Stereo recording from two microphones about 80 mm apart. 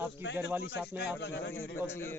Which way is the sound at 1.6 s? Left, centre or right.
Left.